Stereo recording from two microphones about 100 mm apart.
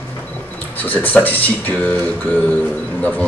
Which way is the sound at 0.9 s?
15° left (ahead or behind).